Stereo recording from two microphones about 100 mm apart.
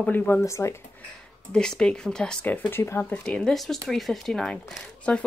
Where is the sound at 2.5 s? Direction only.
25° left (ahead or behind).